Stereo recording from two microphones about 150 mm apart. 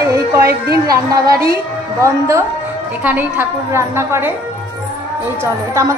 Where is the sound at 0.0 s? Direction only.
20° right (ahead or behind).